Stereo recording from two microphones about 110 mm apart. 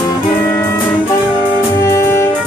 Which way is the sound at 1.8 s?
25° left (ahead or behind).